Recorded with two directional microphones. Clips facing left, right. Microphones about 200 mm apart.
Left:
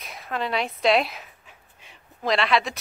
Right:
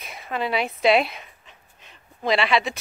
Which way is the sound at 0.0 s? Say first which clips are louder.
Right 2 dB; centre (ahead or behind).